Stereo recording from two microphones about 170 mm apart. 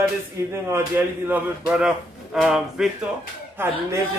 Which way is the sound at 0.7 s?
15° right (ahead or behind).